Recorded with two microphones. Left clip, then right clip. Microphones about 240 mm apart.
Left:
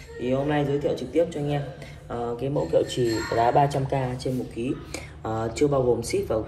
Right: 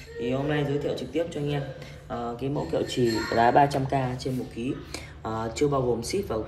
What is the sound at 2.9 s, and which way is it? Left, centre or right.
Speech, right.